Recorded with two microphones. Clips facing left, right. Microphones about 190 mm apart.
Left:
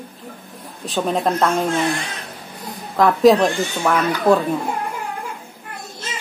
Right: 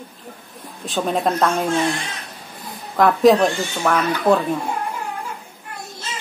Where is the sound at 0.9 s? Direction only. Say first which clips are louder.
Left 1 dB; centre (ahead or behind).